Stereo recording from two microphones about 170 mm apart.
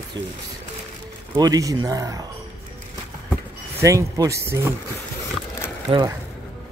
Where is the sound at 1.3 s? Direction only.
25° right (ahead or behind).